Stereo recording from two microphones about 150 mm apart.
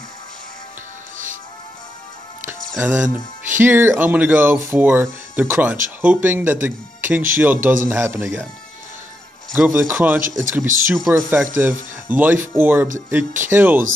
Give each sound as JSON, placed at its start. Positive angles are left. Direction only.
{"t": 1.1, "sound": "music", "side_deg": -60}
{"t": 2.8, "sound": "speech", "side_deg": -10}
{"t": 9.6, "sound": "speech", "side_deg": -15}